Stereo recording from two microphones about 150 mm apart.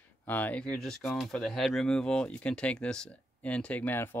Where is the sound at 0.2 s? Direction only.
10° left (ahead or behind).